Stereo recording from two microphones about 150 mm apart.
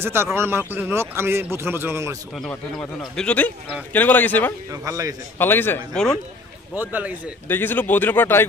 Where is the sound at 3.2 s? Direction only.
10° left (ahead or behind).